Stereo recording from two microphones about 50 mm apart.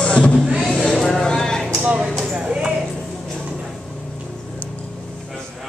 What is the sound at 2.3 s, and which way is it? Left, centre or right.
Clip-clop, centre.